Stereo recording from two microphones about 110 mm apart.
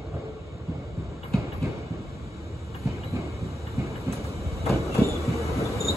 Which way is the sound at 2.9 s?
30° right (ahead or behind).